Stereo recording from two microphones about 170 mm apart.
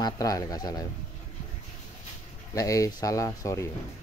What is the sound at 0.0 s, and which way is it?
Speech, 20° left (ahead or behind).